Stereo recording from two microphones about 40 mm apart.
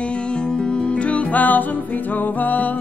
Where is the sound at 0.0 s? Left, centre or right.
Left.